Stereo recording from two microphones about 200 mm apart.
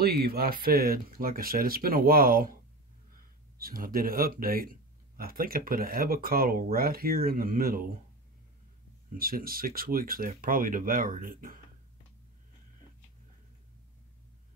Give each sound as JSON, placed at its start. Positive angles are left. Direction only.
{"t": 0.0, "sound": "speech", "side_deg": -50}
{"t": 3.5, "sound": "speech", "side_deg": -45}
{"t": 9.1, "sound": "speech", "side_deg": -45}